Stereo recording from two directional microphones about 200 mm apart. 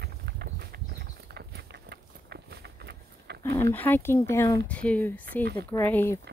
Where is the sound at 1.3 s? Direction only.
55° right (ahead or behind).